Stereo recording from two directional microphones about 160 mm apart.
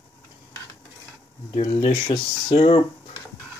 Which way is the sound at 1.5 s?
35° left (ahead or behind).